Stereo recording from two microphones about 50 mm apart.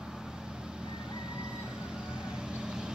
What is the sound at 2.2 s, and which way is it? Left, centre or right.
Vehicle, centre.